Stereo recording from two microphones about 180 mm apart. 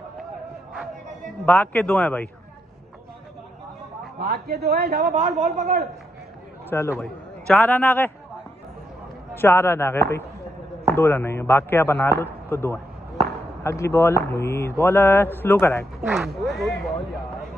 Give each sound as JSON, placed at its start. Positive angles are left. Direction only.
{"t": 1.4, "sound": "a man's voice", "side_deg": 10}
{"t": 4.2, "sound": "a man's voice", "side_deg": -60}
{"t": 6.7, "sound": "a man's voice", "side_deg": 15}
{"t": 9.3, "sound": "a man's voice", "side_deg": 15}
{"t": 16.1, "sound": "speech", "side_deg": 0}